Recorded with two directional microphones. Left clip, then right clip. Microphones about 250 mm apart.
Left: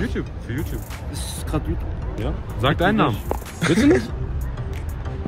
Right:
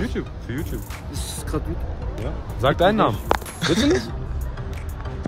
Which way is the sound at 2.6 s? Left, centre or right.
Right.